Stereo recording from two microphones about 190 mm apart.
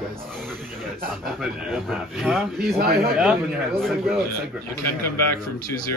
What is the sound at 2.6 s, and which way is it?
Speech, 55° right (ahead or behind).